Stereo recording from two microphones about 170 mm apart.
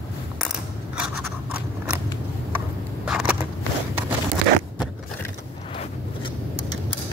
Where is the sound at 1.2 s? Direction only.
10° right (ahead or behind).